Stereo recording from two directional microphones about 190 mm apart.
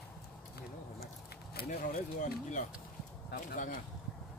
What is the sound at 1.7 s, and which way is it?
Speech, 45° left (ahead or behind).